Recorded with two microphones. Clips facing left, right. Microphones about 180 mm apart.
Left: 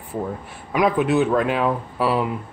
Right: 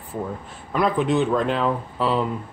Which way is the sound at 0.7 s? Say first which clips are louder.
Left 2 dB; 10° left (ahead or behind).